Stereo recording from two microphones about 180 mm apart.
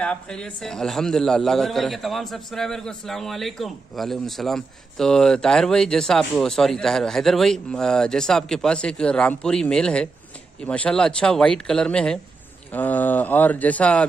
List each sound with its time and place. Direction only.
0.0 s a man's voice: 5° left (ahead or behind)